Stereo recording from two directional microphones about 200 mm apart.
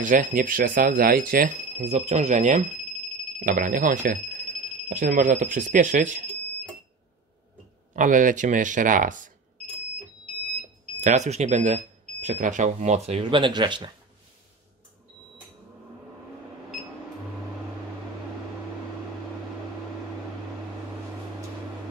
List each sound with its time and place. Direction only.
0.0 s speech: 40° right (ahead or behind)
7.9 s speech: 40° right (ahead or behind)
11.0 s speech: 35° right (ahead or behind)